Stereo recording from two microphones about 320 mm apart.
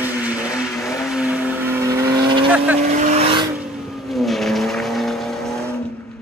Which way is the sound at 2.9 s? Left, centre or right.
Right.